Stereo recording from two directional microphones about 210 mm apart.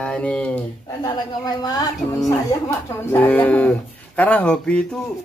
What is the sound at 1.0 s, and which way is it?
A woman's voice, 20° left (ahead or behind).